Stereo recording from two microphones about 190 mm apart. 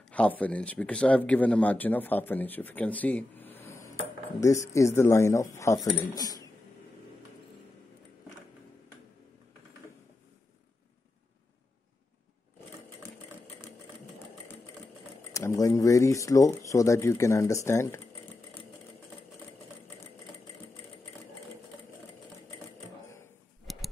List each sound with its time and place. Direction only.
0.1 s speech: 5° left (ahead or behind)
15.3 s speech: 15° left (ahead or behind)
23.7 s tick-tock: centre (ahead or behind)